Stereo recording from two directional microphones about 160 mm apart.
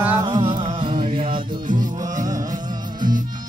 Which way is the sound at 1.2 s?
60° right (ahead or behind).